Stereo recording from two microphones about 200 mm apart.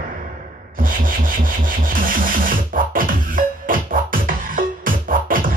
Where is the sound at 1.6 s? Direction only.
45° right (ahead or behind).